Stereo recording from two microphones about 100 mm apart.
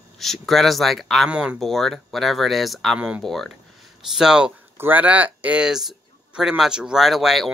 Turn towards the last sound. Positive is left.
turn(degrees=-5)  # may be behind; listen again after turning